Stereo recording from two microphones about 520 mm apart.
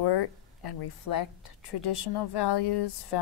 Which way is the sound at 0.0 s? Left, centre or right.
Left.